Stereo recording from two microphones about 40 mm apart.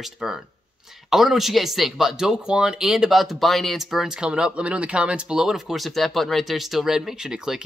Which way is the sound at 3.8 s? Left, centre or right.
Centre.